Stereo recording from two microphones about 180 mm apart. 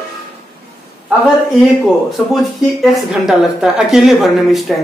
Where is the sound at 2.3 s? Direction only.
Centre (ahead or behind).